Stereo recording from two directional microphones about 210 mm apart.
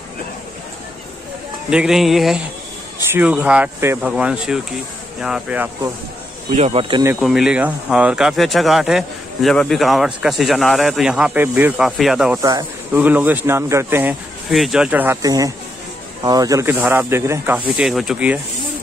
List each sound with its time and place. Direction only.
1.7 s speech: 5° right (ahead or behind)
6.5 s speech: 30° right (ahead or behind)
7.2 s speech: centre (ahead or behind)
12.4 s speech: 15° right (ahead or behind)